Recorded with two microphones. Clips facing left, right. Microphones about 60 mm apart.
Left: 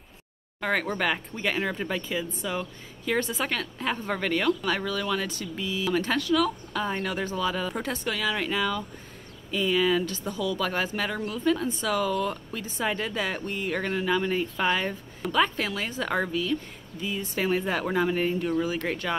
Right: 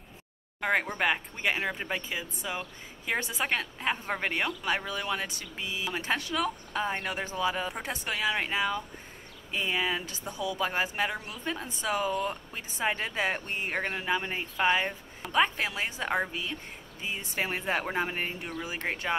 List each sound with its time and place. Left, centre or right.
0.6 s speech: centre